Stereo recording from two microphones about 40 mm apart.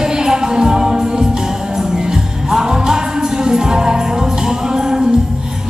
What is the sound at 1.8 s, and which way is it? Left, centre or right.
Jingle bell, centre.